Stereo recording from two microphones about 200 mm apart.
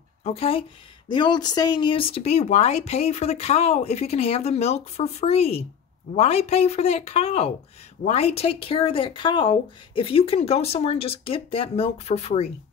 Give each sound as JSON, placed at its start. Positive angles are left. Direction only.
{"t": 0.2, "sound": "a woman's voice", "side_deg": 30}